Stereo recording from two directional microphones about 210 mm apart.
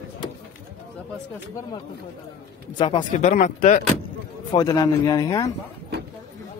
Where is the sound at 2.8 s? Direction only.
30° left (ahead or behind).